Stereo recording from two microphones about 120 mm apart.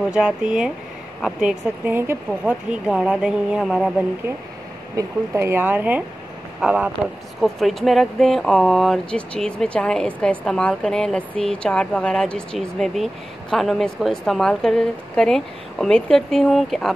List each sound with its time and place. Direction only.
0.1 s speech: 10° right (ahead or behind)
1.9 s speech: 15° right (ahead or behind)
4.9 s speech: 25° right (ahead or behind)
7.4 s speech: centre (ahead or behind)